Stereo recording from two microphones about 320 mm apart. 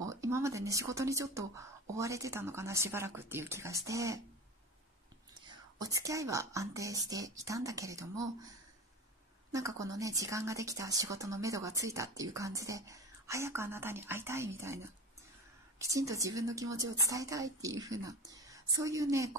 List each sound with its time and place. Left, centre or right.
0.0 s a woman's voice: centre
5.5 s a woman's voice: centre
9.5 s a woman's voice: centre